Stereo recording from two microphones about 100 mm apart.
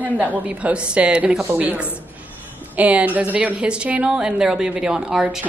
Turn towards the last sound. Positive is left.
turn(degrees=-5)  # may be behind; listen again after turning